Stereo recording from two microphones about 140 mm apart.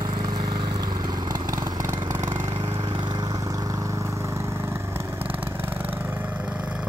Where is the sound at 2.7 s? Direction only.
35° right (ahead or behind).